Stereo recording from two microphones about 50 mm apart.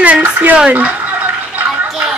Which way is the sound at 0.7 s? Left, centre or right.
Right.